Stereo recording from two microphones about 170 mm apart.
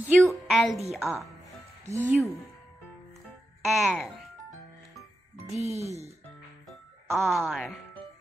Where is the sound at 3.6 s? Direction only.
Centre (ahead or behind).